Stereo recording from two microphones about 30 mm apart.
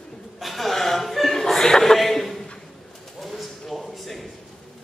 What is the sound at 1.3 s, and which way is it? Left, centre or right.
Chuckle, centre.